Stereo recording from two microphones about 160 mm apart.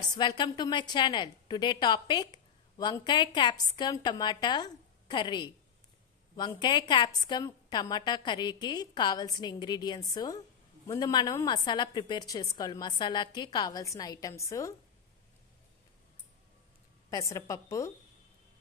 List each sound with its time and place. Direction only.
0.1 s a woman's voice: 25° left (ahead or behind)
17.1 s a woman's voice: 20° left (ahead or behind)